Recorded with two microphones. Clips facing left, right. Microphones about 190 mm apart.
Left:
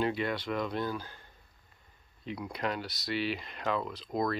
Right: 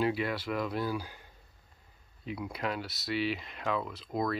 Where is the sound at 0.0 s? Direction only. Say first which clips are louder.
Right 1 dB; 5° right (ahead or behind).